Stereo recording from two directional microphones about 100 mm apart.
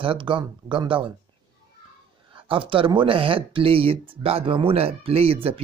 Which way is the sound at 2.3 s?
60° right (ahead or behind).